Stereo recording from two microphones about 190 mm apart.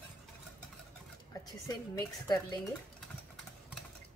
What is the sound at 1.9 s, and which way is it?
Speech, 20° left (ahead or behind).